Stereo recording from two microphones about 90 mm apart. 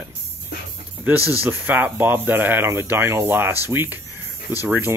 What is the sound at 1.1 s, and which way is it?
Speech, 20° right (ahead or behind).